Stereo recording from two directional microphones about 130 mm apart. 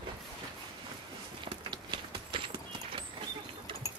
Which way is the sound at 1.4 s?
40° right (ahead or behind).